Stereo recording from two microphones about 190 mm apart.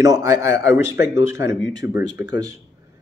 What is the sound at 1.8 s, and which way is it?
Speech, 60° left (ahead or behind).